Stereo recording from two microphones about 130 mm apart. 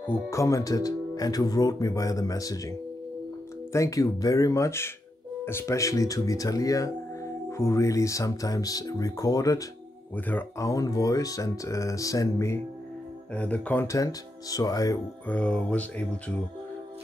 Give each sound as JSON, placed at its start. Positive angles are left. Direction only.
{"t": 0.0, "sound": "speech", "side_deg": 25}
{"t": 3.7, "sound": "speech", "side_deg": 25}
{"t": 10.1, "sound": "speech", "side_deg": 15}
{"t": 10.6, "sound": "speech", "side_deg": 25}
{"t": 13.3, "sound": "speech", "side_deg": 10}
{"t": 13.8, "sound": "speech", "side_deg": 25}
{"t": 15.2, "sound": "speech", "side_deg": 10}